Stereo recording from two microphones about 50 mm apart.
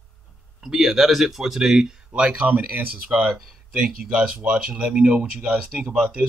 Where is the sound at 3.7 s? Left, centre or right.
Centre.